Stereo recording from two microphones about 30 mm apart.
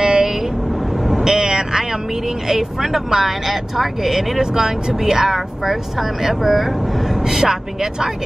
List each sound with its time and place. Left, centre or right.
0.0 s vehicle: right
2.8 s speech: centre
4.4 s speech: centre
7.2 s speech: centre